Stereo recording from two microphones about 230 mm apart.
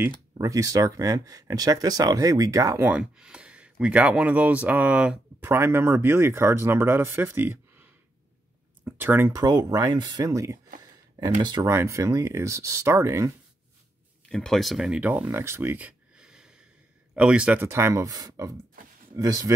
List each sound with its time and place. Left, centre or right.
0.4 s speech: centre
8.8 s speech: centre
10.8 s a sound: centre
11.4 s speech: centre
14.3 s speech: centre